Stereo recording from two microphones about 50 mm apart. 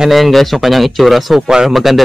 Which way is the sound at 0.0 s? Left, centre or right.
Centre.